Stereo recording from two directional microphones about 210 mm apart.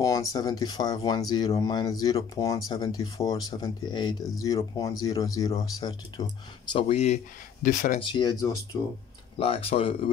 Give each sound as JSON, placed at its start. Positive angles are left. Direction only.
{"t": 0.0, "sound": "speech", "side_deg": 15}
{"t": 7.6, "sound": "speech", "side_deg": 40}
{"t": 8.0, "sound": "speech", "side_deg": 20}